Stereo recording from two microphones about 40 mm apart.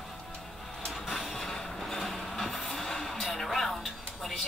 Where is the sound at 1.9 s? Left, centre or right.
Centre.